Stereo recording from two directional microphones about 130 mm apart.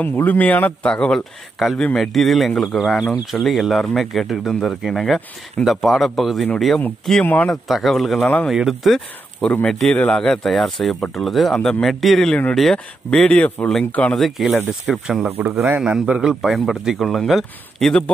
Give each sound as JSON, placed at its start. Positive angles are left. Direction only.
{"t": 0.0, "sound": "speech", "side_deg": 15}
{"t": 7.6, "sound": "speech", "side_deg": 0}
{"t": 15.2, "sound": "speech", "side_deg": -20}
{"t": 15.8, "sound": "speech", "side_deg": -5}